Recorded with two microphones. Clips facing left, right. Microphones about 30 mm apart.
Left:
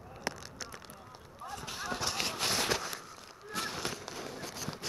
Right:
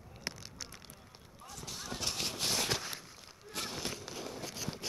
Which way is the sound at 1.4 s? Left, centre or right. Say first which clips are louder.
Left 5 dB; left.